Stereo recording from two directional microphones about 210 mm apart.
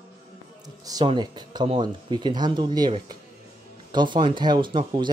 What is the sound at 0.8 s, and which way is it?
Speech, 20° right (ahead or behind).